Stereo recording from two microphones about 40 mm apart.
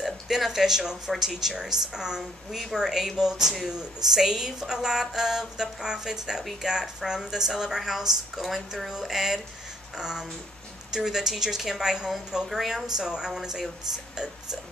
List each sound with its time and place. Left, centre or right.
0.0 s a woman's voice: centre